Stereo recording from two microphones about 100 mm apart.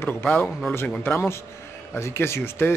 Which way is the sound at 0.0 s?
20° left (ahead or behind).